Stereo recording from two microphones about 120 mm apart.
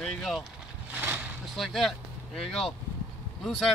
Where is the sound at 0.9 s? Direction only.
20° right (ahead or behind).